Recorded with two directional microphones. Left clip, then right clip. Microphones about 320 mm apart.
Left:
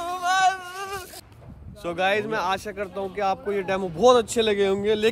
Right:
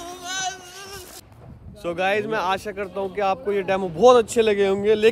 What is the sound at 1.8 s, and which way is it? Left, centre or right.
A man's voice, centre.